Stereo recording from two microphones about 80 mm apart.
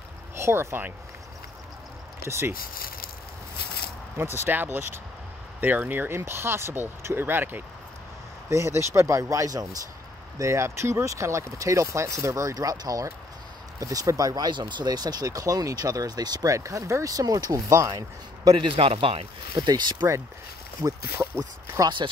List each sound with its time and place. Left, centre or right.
0.4 s speech: right
2.2 s speech: right
4.2 s speech: right
8.5 s speech: right
10.4 s speech: right
16.5 s speech: right
18.6 s speech: right
20.8 s speech: right
21.8 s speech: right